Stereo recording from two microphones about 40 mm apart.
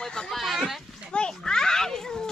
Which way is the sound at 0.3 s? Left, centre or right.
Centre.